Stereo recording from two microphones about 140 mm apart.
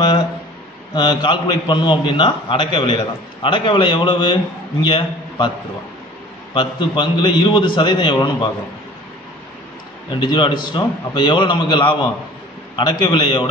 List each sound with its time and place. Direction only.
0.9 s a man's voice: 30° left (ahead or behind)
6.5 s a man's voice: 35° left (ahead or behind)
10.2 s a man's voice: 35° left (ahead or behind)